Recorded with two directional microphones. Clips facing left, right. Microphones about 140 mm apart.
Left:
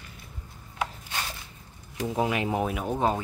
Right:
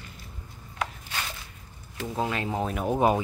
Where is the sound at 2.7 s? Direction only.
5° right (ahead or behind).